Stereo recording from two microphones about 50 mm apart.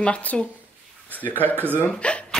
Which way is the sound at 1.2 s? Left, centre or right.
Right.